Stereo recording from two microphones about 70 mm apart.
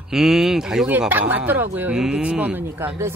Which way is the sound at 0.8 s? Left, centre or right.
Right.